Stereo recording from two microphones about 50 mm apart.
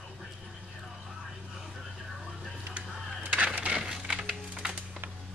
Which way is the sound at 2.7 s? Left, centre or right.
Right.